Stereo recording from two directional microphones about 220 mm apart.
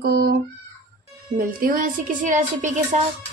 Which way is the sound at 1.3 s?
40° right (ahead or behind).